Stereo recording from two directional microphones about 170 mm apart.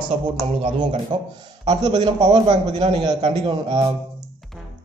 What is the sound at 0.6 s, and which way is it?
A man's voice, 30° right (ahead or behind).